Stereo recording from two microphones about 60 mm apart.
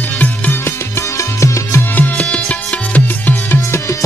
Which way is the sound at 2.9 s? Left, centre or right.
Left.